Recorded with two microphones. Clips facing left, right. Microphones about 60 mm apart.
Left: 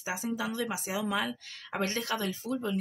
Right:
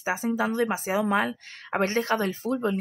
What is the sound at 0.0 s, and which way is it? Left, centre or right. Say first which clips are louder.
Speech: right 7 dB; right.